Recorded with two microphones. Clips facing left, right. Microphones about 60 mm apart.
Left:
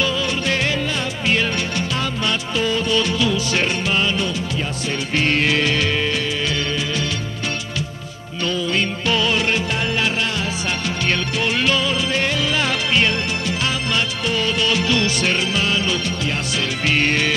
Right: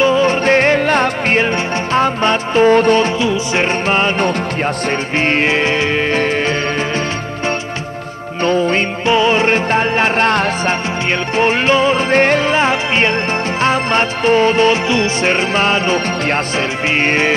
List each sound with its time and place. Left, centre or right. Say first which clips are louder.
0.0 s music: right 9 dB; right
3.8 s music: right 6 dB; right
8.4 s music: right 7 dB; right
9.0 s music: right 9 dB; right
10.7 s music: right 5 dB; right